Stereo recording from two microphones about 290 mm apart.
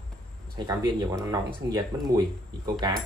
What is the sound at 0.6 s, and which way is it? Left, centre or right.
Speech, centre.